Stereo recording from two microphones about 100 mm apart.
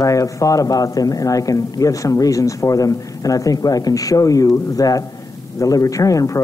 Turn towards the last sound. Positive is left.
turn(degrees=35)  # may be behind; listen again after turning